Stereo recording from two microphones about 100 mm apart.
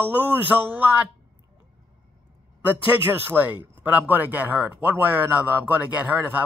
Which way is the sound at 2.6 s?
20° right (ahead or behind).